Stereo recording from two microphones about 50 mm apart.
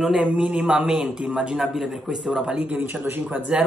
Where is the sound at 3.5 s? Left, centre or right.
Centre.